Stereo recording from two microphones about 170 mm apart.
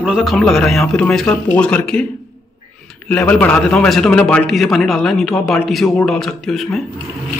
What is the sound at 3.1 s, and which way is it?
A man's voice, 10° left (ahead or behind).